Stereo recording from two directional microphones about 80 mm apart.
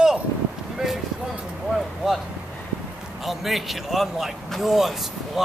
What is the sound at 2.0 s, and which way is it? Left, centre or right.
Speech, centre.